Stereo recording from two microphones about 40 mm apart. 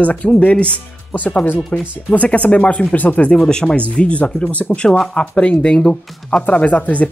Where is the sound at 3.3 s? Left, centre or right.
Centre.